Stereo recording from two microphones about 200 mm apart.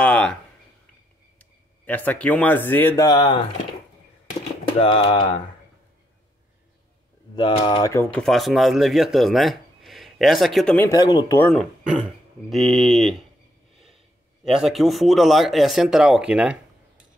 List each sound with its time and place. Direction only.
0.0 s a sound: 5° left (ahead or behind)
1.4 s speech: 10° left (ahead or behind)
3.1 s speech: 20° left (ahead or behind)
4.7 s speech: 25° left (ahead or behind)
7.3 s speech: 25° left (ahead or behind); by 10.9 s 5° left (ahead or behind)
10.9 s speech: 20° left (ahead or behind)
12.4 s speech: centre (ahead or behind)
14.4 s speech: centre (ahead or behind)